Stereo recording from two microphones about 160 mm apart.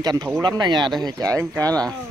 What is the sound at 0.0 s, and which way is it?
Speech, 25° right (ahead or behind).